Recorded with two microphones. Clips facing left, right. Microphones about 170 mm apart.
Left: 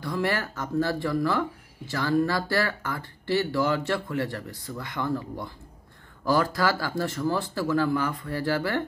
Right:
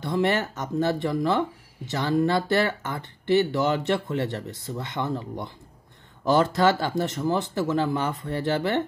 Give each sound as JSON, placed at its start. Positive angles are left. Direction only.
{"t": 0.0, "sound": "speech", "side_deg": -20}